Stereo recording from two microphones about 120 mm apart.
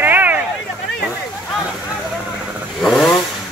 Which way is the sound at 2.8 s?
Centre (ahead or behind).